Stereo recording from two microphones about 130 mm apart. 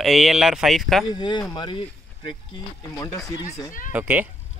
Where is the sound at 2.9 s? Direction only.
25° left (ahead or behind).